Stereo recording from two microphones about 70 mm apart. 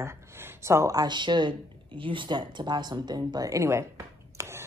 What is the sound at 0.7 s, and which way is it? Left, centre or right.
Speech, right.